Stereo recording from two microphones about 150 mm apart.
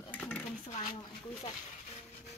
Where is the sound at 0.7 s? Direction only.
50° left (ahead or behind).